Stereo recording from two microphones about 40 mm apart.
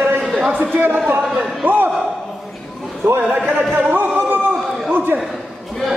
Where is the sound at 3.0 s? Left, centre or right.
Right.